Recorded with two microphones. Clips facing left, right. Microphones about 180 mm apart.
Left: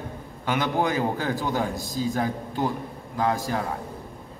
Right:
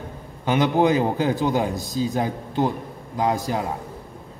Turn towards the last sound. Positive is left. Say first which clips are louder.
# right 2 dB
turn(degrees=-20)  # may be behind; listen again after turning